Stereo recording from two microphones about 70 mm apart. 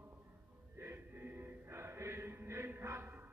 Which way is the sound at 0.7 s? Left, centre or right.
Right.